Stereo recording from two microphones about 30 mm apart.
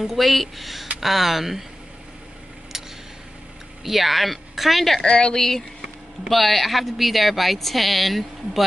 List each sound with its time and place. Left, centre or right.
0.0 s speech: centre
2.7 s a sound: centre
3.8 s speech: centre
5.0 s speech: left
5.3 s speech: centre
6.2 s speech: centre